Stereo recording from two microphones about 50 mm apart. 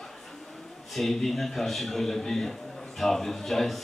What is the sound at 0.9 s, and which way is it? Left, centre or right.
A man's voice, centre.